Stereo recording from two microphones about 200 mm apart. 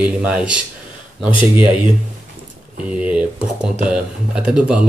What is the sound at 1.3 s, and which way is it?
Speech, 25° left (ahead or behind).